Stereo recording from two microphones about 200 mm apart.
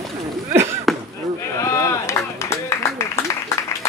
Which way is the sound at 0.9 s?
Centre (ahead or behind).